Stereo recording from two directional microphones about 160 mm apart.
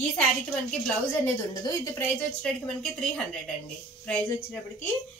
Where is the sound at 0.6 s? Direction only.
5° left (ahead or behind).